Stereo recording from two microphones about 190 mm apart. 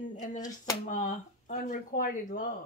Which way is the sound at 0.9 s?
40° left (ahead or behind).